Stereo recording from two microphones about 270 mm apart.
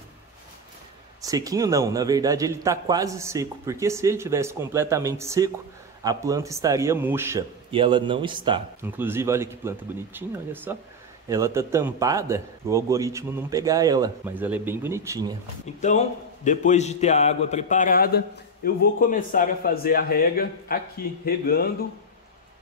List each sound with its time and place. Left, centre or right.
1.2 s speech: centre
8.8 s speech: centre
15.6 s a man's voice: left